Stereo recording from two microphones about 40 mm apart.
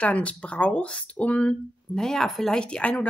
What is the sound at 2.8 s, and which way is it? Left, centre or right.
Speech, left.